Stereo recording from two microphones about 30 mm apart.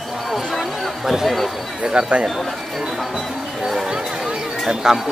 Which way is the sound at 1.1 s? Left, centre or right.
Centre.